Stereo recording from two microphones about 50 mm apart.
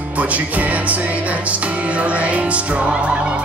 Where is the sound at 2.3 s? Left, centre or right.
Right.